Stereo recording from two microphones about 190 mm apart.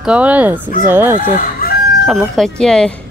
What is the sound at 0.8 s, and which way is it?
Chicken, 10° right (ahead or behind).